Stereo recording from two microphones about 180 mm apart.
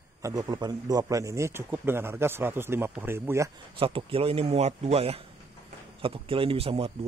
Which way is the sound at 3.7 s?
30° right (ahead or behind).